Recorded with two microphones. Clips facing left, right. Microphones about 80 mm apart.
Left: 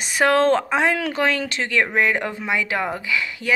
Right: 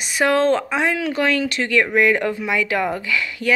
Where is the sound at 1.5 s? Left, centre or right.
Left.